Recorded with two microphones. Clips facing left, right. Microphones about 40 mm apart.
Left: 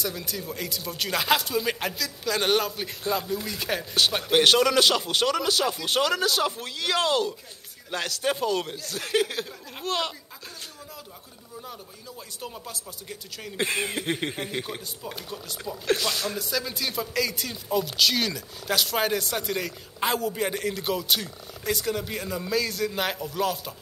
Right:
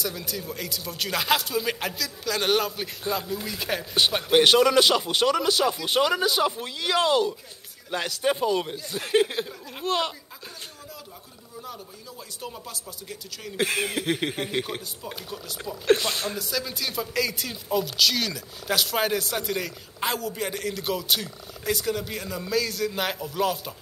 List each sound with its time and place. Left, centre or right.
0.0 s speech: centre
9.5 s speech: centre
12.4 s speech: centre
15.0 s speech: centre
15.9 s speech: right
16.3 s speech: centre